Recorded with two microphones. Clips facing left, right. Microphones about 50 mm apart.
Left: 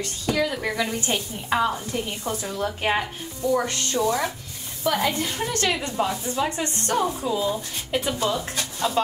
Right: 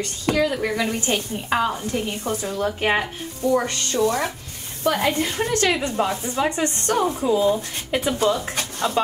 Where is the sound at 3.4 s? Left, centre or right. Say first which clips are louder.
Right 2 dB; right.